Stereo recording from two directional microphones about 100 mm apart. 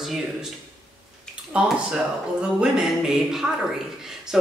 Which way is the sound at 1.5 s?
10° right (ahead or behind).